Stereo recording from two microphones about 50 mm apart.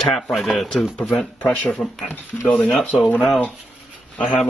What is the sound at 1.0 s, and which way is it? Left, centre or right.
Speech, centre.